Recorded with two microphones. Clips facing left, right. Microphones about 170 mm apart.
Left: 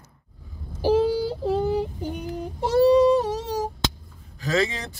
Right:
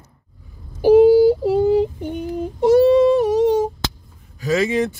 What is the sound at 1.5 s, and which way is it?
Speech, 20° right (ahead or behind).